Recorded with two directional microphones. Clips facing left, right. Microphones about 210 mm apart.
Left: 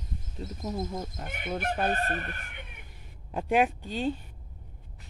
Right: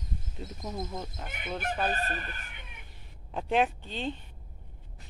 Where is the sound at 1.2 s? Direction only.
50° left (ahead or behind).